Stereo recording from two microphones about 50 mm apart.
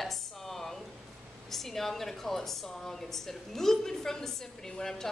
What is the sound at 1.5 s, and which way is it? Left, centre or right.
Speech, centre.